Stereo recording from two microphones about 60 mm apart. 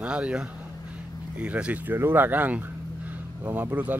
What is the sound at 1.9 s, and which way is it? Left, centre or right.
Speech, right.